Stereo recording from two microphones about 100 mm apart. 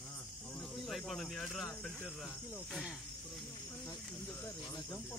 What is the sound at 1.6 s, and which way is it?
Speech, 20° left (ahead or behind).